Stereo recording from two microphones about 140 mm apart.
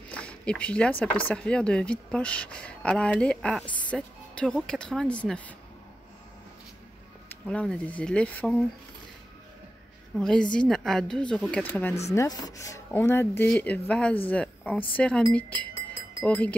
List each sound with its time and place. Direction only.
0.1 s speech: 10° left (ahead or behind)
7.2 s speech: 10° left (ahead or behind)
10.1 s a woman's voice: 5° left (ahead or behind)
12.1 s speech: 25° left (ahead or behind)